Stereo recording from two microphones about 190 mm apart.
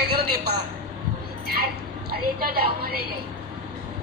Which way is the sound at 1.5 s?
55° right (ahead or behind).